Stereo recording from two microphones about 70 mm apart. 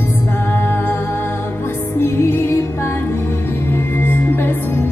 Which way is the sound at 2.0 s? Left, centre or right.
Left.